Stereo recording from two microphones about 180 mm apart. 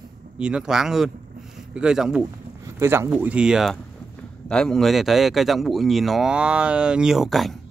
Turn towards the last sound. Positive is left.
turn(degrees=0)  # may be behind; listen again after turning